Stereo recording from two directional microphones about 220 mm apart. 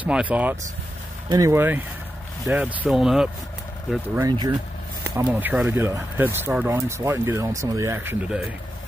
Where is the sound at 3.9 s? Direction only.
10° right (ahead or behind).